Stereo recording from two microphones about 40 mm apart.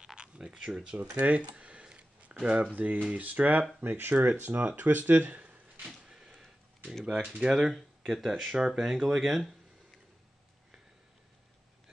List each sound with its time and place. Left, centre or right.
0.0 s a sound: centre
1.1 s speech: right
3.8 s speech: right
5.3 s a sound: right
6.0 s a sound: centre
7.4 s speech: centre
7.7 s speech: centre
8.5 s speech: centre
9.0 s speech: centre